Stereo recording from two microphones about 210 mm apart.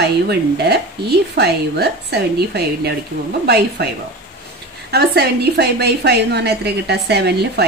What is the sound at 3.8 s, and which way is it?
A woman's voice, 50° right (ahead or behind).